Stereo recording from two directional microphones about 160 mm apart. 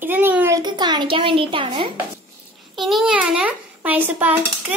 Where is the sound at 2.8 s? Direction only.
Centre (ahead or behind).